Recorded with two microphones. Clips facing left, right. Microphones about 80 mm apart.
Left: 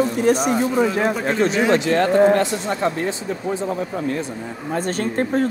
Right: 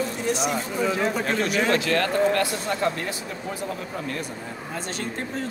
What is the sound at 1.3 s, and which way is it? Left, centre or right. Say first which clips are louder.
Speech: left 6 dB; left.